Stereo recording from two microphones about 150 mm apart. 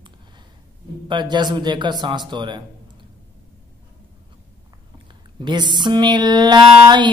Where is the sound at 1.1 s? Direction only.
30° right (ahead or behind).